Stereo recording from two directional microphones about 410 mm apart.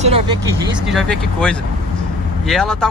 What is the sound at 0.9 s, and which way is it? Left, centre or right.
Speech, centre.